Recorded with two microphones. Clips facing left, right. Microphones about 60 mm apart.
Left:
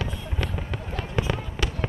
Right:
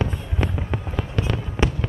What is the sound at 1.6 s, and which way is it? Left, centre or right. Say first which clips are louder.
Fireworks: right 10 dB; centre.